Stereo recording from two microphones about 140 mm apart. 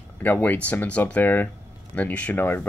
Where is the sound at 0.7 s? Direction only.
10° left (ahead or behind).